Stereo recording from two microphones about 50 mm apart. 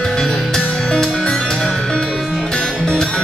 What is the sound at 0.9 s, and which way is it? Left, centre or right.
Music, centre.